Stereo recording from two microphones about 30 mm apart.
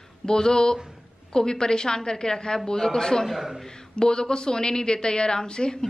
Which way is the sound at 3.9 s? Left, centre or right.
Left.